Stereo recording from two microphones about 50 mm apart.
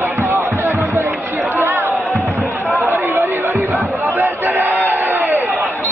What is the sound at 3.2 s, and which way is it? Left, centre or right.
Chatter, right.